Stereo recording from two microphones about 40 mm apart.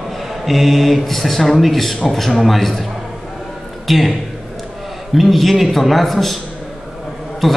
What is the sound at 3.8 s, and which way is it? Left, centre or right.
Speech, centre.